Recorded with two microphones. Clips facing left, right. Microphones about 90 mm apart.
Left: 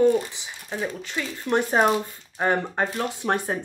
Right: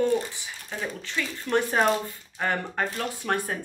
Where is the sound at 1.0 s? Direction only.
20° left (ahead or behind).